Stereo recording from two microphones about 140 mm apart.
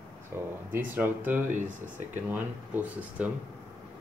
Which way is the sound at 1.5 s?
60° right (ahead or behind).